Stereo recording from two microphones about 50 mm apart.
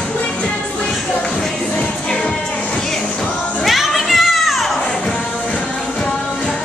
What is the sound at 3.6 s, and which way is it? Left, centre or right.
Children playing, centre.